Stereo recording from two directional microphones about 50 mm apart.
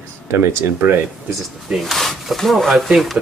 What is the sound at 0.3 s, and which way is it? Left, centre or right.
Speech, right.